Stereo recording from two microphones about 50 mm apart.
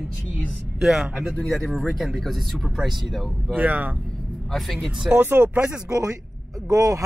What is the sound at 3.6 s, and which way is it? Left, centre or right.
Speech, right.